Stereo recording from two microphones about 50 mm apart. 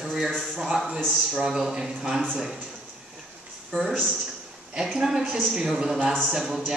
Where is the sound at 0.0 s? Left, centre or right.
Centre.